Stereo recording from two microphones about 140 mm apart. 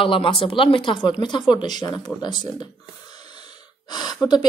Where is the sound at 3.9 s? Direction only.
30° left (ahead or behind).